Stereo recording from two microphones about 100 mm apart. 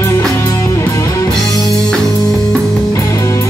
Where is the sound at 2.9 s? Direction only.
30° left (ahead or behind).